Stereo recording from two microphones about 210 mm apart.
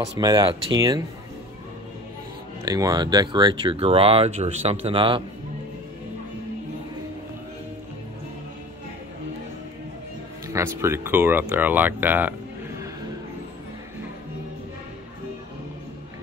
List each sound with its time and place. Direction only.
0.2 s speech: 15° right (ahead or behind)
2.6 s speech: 15° right (ahead or behind)
10.5 s speech: 10° right (ahead or behind)